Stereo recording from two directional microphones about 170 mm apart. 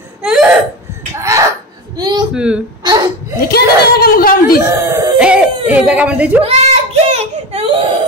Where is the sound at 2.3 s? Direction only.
5° right (ahead or behind).